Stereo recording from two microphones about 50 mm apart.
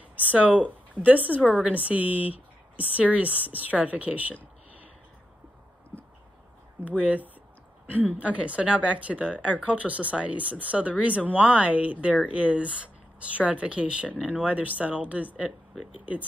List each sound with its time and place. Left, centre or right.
0.1 s a woman's voice: right
6.8 s speech: right
7.8 s a sound: right
8.2 s speech: right
14.0 s speech: left
14.3 s speech: right